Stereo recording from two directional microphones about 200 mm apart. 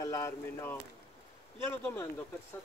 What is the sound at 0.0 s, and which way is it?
Speech, 15° left (ahead or behind).